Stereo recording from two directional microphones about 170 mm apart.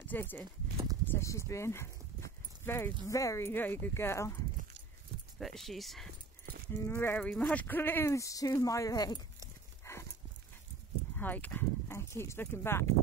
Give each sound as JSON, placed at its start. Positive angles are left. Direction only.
{"t": 0.1, "sound": "speech", "side_deg": 10}
{"t": 5.4, "sound": "speech", "side_deg": 0}
{"t": 6.7, "sound": "speech", "side_deg": 15}
{"t": 9.8, "sound": "dog", "side_deg": 15}
{"t": 11.1, "sound": "speech", "side_deg": 10}